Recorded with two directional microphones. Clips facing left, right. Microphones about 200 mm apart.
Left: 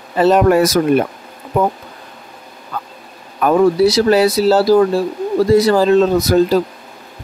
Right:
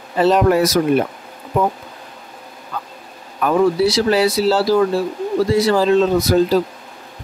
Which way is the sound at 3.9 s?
45° left (ahead or behind).